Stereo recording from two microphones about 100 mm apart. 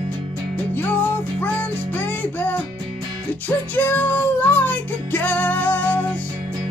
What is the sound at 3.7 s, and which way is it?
Music, 20° left (ahead or behind).